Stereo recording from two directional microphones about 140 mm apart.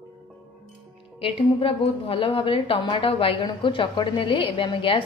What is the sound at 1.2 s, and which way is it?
A woman's voice, 40° left (ahead or behind).